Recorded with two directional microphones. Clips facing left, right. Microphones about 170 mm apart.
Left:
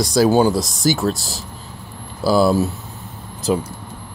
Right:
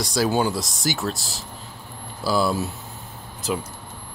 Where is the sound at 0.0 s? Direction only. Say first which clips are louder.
Left 7 dB; 40° left (ahead or behind).